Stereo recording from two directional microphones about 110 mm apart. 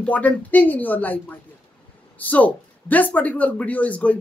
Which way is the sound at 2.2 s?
15° left (ahead or behind).